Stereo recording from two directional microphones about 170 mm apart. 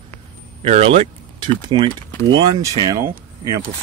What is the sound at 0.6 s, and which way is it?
Speech, 35° right (ahead or behind).